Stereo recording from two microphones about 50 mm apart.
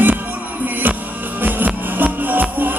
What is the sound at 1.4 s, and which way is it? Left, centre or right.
Music, right.